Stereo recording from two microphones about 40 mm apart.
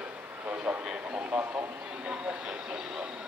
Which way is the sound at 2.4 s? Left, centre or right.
Centre.